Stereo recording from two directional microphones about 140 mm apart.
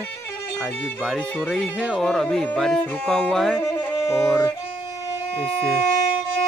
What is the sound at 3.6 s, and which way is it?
Music, 20° left (ahead or behind).